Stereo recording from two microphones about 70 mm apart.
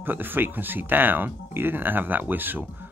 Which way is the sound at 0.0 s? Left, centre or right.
Right.